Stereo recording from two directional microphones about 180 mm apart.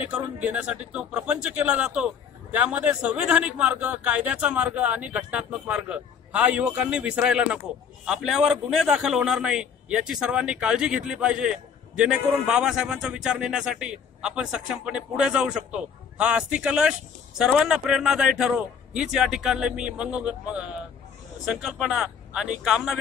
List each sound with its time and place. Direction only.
0.0 s a man's voice: 5° right (ahead or behind)